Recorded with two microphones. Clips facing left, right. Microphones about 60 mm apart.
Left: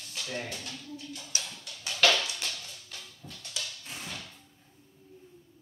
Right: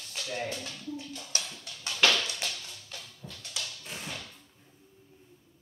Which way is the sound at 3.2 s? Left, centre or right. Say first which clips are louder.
Right 1 dB; centre.